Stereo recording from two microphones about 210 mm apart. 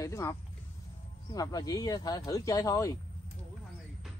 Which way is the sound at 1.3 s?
15° left (ahead or behind).